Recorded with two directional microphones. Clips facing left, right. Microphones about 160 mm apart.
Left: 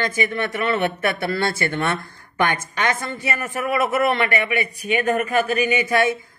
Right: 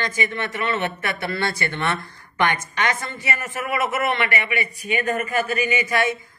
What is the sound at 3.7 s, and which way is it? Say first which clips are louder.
Speech: left 3 dB; 40° left (ahead or behind).